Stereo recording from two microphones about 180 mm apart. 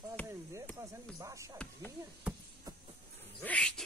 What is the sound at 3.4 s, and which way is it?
Cat, 5° left (ahead or behind).